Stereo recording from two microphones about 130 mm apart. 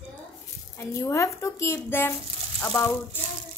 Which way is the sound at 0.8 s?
25° left (ahead or behind).